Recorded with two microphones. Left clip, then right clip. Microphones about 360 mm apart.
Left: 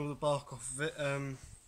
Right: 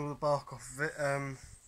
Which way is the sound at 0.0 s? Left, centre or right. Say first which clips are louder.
Right 2 dB; centre.